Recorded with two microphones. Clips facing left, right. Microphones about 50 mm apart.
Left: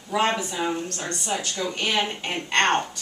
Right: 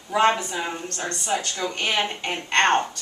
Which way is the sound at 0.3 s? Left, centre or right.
Centre.